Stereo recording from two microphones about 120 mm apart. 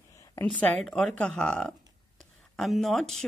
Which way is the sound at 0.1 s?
25° left (ahead or behind).